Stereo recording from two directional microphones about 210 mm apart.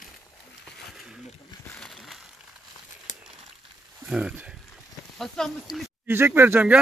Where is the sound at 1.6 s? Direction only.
5° left (ahead or behind).